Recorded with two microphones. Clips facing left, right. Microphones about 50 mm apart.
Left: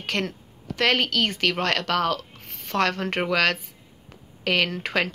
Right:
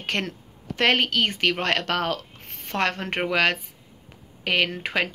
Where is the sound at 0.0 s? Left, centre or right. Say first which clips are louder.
Even; right.